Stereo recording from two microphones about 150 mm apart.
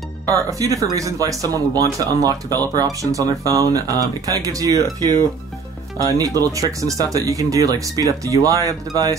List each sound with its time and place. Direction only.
0.3 s speech: 20° right (ahead or behind)
5.9 s speech: 25° right (ahead or behind)